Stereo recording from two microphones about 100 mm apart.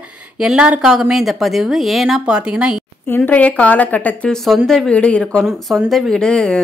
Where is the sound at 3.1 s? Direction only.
15° left (ahead or behind).